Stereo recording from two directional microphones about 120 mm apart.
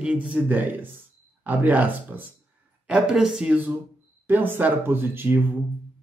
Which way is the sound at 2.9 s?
5° right (ahead or behind).